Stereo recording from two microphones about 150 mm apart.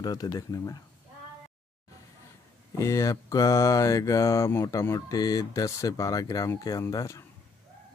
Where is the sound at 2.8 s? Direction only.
20° left (ahead or behind).